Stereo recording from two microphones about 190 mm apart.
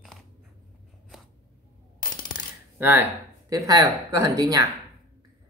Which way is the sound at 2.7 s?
10° right (ahead or behind).